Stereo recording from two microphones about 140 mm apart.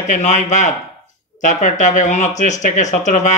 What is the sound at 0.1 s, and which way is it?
Speech, 60° left (ahead or behind).